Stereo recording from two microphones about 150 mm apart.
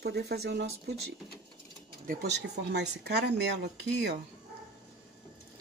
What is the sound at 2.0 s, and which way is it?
Speech, 80° right.